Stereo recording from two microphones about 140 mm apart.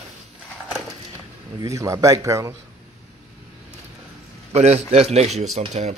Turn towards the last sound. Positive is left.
turn(degrees=-50)  # may be behind; listen again after turning